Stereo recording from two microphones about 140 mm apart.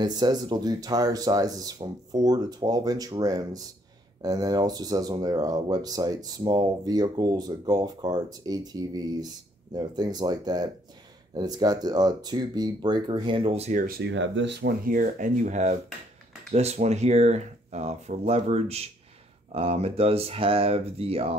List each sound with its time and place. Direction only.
0.0 s speech: 30° right (ahead or behind); by 13.7 s 45° right (ahead or behind)
13.7 s speech: 90° right
14.6 s speech: 80° right; by 21.4 s 45° right (ahead or behind)